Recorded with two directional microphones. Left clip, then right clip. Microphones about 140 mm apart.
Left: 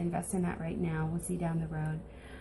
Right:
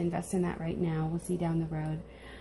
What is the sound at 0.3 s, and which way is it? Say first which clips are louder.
Speech: right 7 dB; 40° right (ahead or behind).